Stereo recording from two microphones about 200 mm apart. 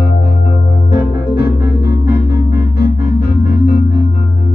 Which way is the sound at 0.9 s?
55° left (ahead or behind).